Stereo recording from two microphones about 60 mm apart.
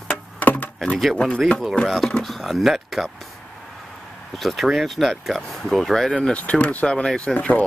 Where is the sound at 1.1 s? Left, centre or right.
Centre.